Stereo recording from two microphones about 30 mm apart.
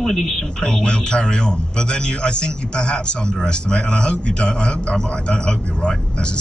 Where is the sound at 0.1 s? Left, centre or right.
Centre.